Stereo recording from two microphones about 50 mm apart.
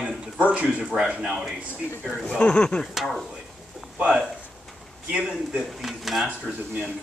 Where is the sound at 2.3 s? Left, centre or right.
Left.